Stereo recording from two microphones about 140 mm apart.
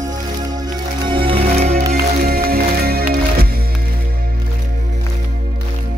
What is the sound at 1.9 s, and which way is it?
Music, 90° right.